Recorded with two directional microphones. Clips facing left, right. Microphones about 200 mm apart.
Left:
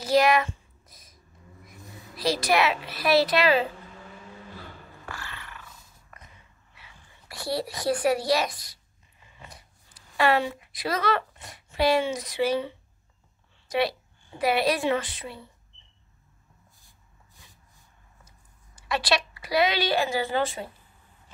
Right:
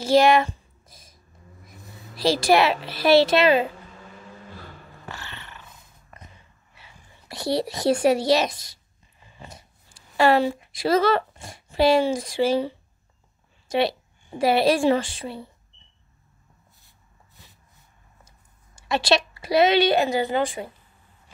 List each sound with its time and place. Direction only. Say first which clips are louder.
0.0 s a sound: right 4 dB; 25° right (ahead or behind)
2.1 s a woman's voice: right 5 dB; 30° right (ahead or behind)
5.0 s dog: right 1 dB; 25° right (ahead or behind)
6.8 s speech: right 2 dB; 25° right (ahead or behind)
9.2 s a sound: right 5 dB; 30° right (ahead or behind)
13.7 s a woman's voice: right 3 dB; 25° right (ahead or behind)
18.8 s a woman's voice: right 5 dB; 25° right (ahead or behind)